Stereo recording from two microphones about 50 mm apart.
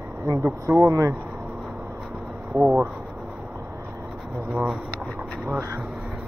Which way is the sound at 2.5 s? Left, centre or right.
Right.